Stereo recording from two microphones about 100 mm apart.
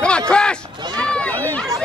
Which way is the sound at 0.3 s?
10° left (ahead or behind).